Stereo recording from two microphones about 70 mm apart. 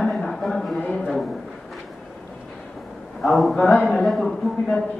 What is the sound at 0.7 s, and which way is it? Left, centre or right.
Speech, centre.